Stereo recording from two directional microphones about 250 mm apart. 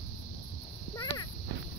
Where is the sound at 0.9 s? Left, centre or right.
Centre.